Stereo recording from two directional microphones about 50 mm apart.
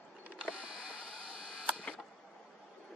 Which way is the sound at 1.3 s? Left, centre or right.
Centre.